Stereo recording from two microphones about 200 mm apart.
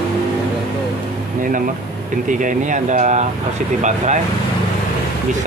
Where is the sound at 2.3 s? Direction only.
40° right (ahead or behind).